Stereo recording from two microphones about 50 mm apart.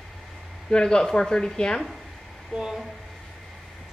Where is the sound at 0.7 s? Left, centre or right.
Centre.